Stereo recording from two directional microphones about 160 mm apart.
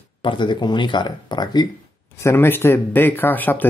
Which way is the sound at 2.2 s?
15° left (ahead or behind).